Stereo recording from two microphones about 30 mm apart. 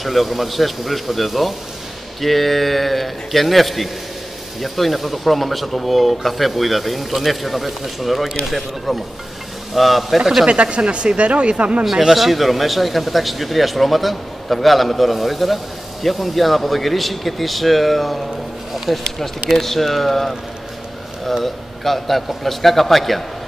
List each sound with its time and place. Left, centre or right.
0.0 s speech: centre
10.4 s speech: right
11.8 s speech: centre
18.9 s speech: centre
19.5 s speech: centre
21.8 s speech: centre